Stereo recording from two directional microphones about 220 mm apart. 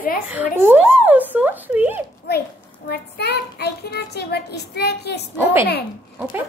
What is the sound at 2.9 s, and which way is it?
Child singing, 50° left (ahead or behind).